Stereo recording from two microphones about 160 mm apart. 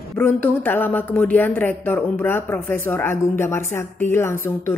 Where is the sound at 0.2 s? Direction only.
15° left (ahead or behind).